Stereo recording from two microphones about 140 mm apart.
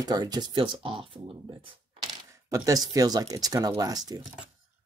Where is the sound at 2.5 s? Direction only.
25° right (ahead or behind).